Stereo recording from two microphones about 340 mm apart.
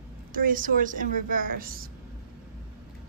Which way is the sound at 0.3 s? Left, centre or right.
Right.